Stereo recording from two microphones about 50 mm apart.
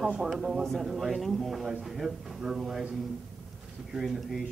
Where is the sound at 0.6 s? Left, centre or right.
Centre.